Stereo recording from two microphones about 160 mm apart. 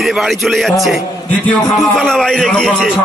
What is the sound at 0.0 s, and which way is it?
A man's voice, centre (ahead or behind).